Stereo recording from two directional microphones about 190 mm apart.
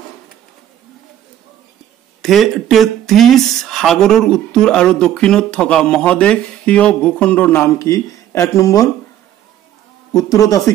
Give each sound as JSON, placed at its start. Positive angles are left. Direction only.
{"t": 2.2, "sound": "speech", "side_deg": 0}
{"t": 10.1, "sound": "speech", "side_deg": 20}